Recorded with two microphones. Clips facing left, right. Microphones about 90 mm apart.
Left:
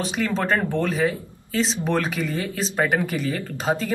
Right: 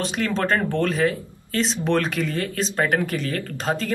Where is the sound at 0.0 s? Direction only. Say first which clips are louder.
Even; 5° left (ahead or behind).